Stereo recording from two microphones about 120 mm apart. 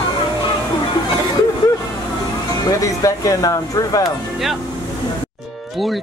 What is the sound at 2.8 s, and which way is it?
Speech, 30° left (ahead or behind).